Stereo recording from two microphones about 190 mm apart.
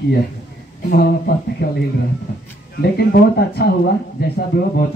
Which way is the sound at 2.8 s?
55° left (ahead or behind).